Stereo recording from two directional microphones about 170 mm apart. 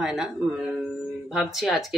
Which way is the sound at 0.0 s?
5° right (ahead or behind).